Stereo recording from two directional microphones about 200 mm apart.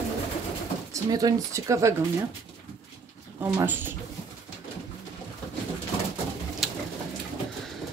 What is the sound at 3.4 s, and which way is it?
Speech, 10° right (ahead or behind).